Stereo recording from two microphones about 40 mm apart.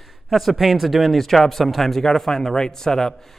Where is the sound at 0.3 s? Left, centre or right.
Centre.